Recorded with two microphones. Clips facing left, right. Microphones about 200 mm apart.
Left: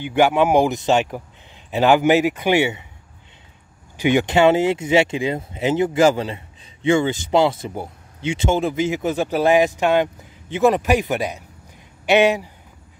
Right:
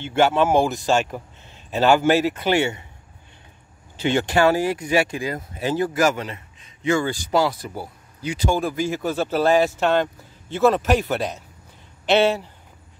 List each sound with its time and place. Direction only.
0.0 s speech: 15° left (ahead or behind)
3.9 s speech: 15° left (ahead or behind)